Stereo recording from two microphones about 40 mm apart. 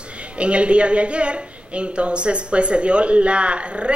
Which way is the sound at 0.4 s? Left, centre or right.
Right.